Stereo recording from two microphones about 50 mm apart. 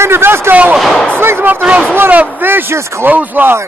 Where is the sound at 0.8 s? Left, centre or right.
Centre.